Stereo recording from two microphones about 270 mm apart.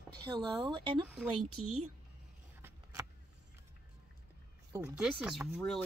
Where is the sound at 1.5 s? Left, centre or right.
Right.